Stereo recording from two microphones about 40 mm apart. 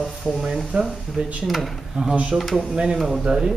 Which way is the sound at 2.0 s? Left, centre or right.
Right.